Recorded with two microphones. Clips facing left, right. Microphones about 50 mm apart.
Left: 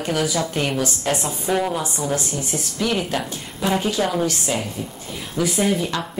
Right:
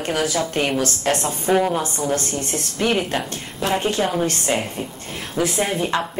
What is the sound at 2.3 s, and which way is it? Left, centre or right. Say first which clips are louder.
Speech: right 1 dB; right.